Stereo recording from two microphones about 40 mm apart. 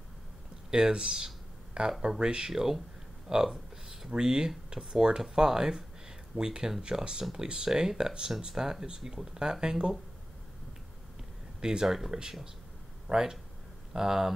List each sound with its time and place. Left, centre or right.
0.7 s speech: centre
3.4 s a sound: centre
4.1 s speech: centre
11.6 s speech: centre